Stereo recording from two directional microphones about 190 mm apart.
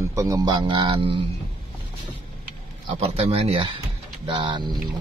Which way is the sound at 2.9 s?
30° right (ahead or behind).